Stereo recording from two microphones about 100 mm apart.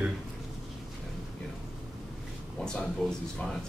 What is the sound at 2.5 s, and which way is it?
Speech, 5° left (ahead or behind).